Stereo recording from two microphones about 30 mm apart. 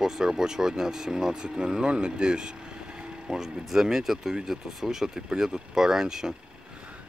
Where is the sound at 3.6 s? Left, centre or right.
Centre.